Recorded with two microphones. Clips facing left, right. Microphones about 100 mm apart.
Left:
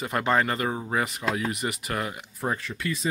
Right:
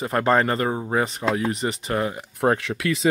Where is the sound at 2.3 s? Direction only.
75° right (ahead or behind).